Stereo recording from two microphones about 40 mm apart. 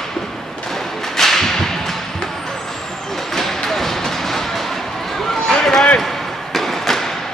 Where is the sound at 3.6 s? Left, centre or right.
Centre.